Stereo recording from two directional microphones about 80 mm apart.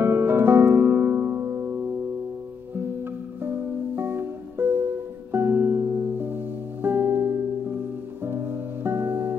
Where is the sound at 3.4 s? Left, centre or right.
Right.